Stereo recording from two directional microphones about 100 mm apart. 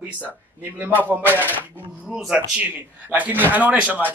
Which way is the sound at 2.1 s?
5° right (ahead or behind).